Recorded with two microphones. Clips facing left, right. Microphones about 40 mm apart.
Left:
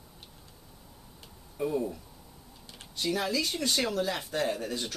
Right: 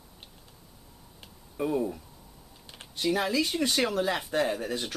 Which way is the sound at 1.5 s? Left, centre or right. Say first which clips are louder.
Right 2 dB; centre.